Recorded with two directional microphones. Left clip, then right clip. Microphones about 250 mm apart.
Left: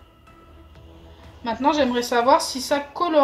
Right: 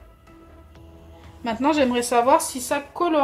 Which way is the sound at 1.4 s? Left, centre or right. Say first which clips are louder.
Even; right.